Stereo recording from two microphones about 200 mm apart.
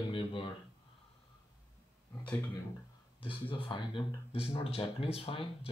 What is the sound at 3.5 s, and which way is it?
Speech, 25° left (ahead or behind).